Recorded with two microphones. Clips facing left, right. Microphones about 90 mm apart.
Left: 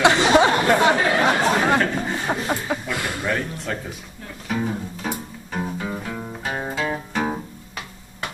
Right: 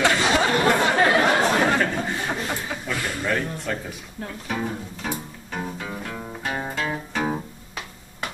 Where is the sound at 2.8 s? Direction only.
10° left (ahead or behind).